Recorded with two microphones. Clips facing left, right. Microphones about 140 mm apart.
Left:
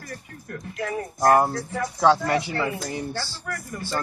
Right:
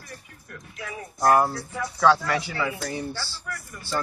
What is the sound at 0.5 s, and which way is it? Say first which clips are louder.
Speech: left 8 dB; 50° left (ahead or behind).